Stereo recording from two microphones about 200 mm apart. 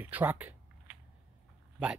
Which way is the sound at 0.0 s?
10° right (ahead or behind).